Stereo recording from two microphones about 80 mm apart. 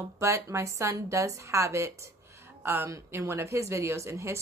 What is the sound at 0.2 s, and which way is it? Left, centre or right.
Speech, right.